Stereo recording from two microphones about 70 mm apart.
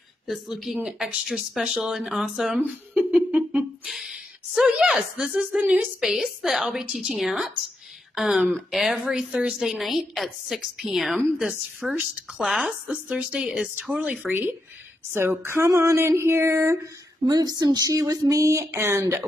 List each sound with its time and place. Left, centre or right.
0.3 s a woman's voice: centre
2.9 s a sound: centre
3.8 s a sound: centre
5.6 s speech: centre
6.0 s a woman's voice: centre
14.2 s speech: right
17.3 s speech: right